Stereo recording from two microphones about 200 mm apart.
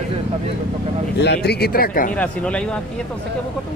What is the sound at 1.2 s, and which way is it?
Speech, 55° left (ahead or behind).